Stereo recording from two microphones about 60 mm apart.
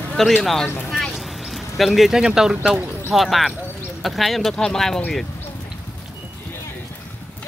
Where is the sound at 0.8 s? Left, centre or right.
Centre.